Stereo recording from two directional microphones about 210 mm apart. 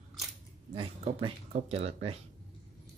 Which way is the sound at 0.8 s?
25° right (ahead or behind).